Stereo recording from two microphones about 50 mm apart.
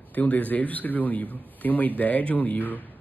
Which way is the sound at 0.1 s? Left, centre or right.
Left.